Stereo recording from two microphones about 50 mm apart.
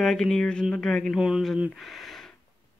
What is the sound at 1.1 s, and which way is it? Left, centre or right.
Speech, centre.